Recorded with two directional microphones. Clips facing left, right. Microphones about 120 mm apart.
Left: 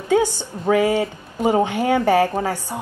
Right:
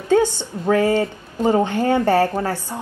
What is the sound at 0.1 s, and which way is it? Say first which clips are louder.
A woman's voice: right 2 dB; 15° left (ahead or behind).